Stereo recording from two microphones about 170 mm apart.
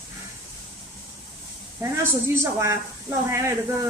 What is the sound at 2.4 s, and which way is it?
Speech, 15° right (ahead or behind).